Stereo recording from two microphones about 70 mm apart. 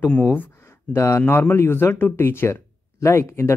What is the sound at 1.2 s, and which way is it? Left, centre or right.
A man's voice, left.